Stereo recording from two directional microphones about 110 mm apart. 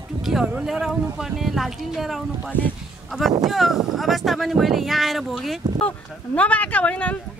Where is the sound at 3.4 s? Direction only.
Centre (ahead or behind).